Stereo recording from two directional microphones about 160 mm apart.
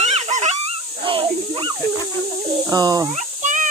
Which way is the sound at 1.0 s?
30° right (ahead or behind).